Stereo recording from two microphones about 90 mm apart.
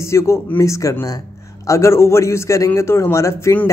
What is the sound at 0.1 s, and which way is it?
A man's voice, 30° left (ahead or behind).